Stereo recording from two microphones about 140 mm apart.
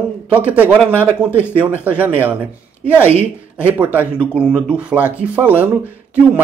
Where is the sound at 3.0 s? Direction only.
15° left (ahead or behind).